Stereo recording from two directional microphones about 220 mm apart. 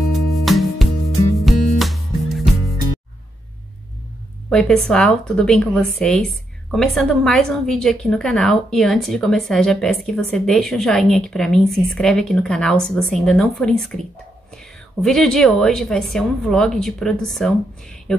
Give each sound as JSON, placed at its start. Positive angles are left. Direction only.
{"t": 0.1, "sound": "music", "side_deg": 0}
{"t": 4.5, "sound": "a woman's voice", "side_deg": 5}